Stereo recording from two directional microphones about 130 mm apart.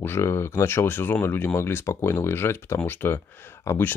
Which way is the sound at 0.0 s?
20° left (ahead or behind).